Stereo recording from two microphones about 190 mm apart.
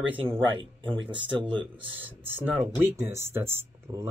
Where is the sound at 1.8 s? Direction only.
10° right (ahead or behind).